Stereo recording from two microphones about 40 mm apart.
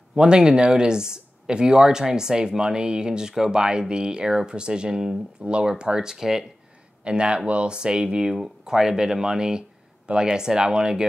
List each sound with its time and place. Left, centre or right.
0.1 s speech: centre
7.1 s speech: right